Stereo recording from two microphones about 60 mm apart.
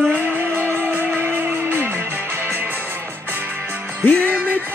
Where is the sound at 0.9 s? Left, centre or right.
Right.